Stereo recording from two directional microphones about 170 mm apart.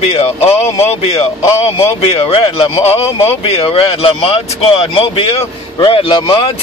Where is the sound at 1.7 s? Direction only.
35° left (ahead or behind).